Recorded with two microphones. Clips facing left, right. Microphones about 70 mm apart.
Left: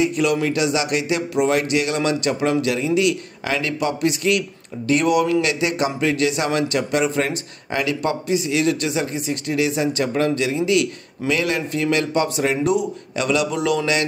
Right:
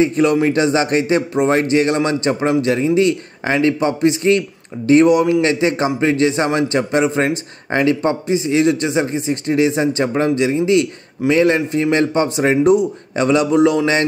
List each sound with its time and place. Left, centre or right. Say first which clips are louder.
0.0 s a man's voice: right 5 dB; right